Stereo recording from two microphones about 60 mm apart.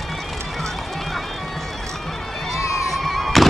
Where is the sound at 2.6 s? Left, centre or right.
Left.